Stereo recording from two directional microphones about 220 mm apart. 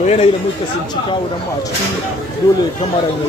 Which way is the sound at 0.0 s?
30° left (ahead or behind).